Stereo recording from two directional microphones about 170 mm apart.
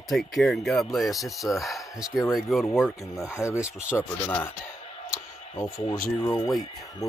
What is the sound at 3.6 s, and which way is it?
Speech, 5° right (ahead or behind).